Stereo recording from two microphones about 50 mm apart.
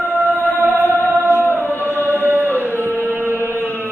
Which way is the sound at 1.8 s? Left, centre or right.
Right.